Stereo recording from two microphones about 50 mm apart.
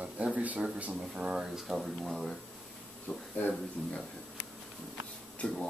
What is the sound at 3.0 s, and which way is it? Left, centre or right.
Speech, left.